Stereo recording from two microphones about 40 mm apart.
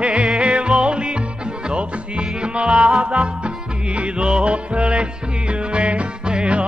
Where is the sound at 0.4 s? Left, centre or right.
Right.